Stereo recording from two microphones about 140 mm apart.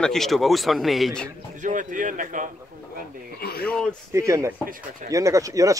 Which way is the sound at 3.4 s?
90° left.